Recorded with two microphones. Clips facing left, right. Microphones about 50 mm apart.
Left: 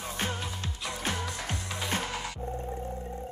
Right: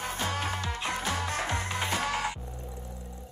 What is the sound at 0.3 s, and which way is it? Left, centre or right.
Music, right.